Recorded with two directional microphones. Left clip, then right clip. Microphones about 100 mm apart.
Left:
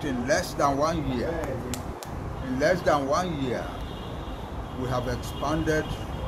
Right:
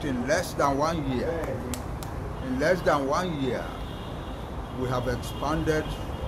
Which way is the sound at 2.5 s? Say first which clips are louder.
Left 1 dB; 15° right (ahead or behind).